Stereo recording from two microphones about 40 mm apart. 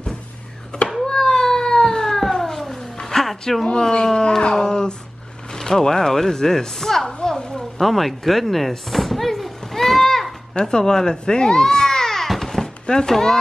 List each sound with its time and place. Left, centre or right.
1.0 s cat: centre
3.6 s speech: centre
7.1 s a sound: centre
7.8 s a sound: centre
10.6 s cat: centre
12.8 s speech: centre